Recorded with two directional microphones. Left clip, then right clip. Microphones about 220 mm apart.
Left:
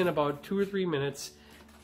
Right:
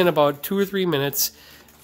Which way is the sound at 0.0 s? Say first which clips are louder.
Right 10 dB; 45° right (ahead or behind).